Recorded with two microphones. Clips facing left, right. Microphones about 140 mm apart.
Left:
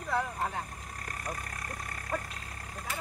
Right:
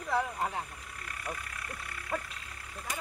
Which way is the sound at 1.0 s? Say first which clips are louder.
Left 1 dB; 40° left (ahead or behind).